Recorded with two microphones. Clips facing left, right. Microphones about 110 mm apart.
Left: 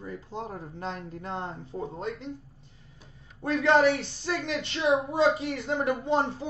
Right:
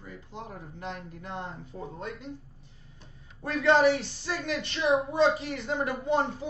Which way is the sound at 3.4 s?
30° left (ahead or behind).